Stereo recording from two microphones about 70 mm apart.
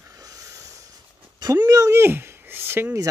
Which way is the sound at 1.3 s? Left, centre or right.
Right.